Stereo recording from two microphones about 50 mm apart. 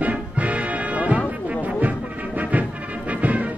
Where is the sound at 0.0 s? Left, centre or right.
Right.